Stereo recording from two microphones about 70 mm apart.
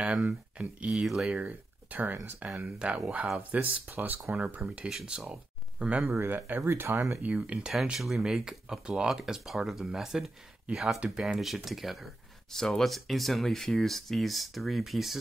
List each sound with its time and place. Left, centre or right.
0.0 s speech: centre
6.2 s speech: right
7.2 s speech: centre
8.0 s speech: centre
11.0 s speech: centre
11.3 s speech: centre